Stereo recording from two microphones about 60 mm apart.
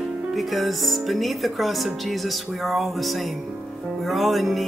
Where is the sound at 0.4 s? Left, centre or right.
Centre.